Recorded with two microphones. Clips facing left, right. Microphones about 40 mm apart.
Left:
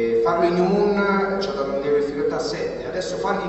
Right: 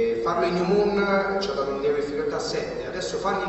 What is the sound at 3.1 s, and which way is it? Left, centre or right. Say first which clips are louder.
Speech: left 1 dB; left.